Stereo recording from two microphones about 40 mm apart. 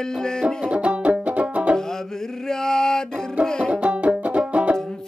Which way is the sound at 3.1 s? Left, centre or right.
Centre.